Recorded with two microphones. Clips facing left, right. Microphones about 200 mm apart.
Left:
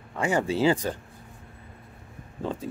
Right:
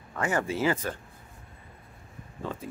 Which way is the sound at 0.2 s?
15° left (ahead or behind).